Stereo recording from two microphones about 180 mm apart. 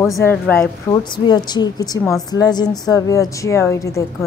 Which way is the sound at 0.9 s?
25° left (ahead or behind).